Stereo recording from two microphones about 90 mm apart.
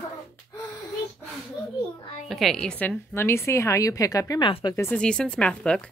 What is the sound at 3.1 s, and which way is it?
A woman's voice, 30° left (ahead or behind).